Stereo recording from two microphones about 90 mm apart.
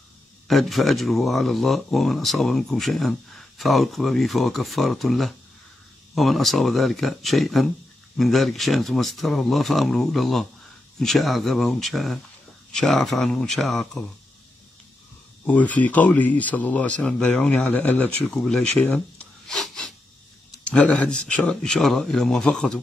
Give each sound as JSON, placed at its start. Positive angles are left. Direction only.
{"t": 0.5, "sound": "speech", "side_deg": 0}
{"t": 15.4, "sound": "speech", "side_deg": 15}
{"t": 18.8, "sound": "a sound", "side_deg": 10}
{"t": 20.6, "sound": "speech", "side_deg": 10}